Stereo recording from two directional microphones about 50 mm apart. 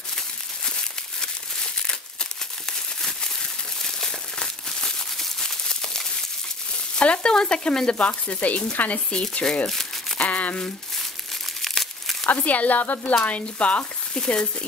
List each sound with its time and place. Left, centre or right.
3.8 s crumpling: centre
7.0 s speech: centre
9.1 s speech: centre
10.1 s crumpling: left
11.6 s crumpling: centre
12.3 s speech: left
14.1 s speech: centre